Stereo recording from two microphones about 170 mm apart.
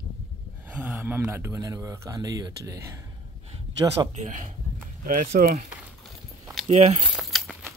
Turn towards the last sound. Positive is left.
turn(degrees=0)  # may be behind; listen again after turning